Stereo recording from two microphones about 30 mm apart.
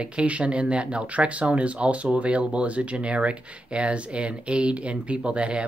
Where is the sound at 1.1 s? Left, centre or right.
Right.